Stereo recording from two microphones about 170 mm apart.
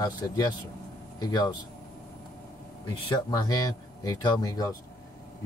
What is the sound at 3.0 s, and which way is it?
Speech, 25° left (ahead or behind).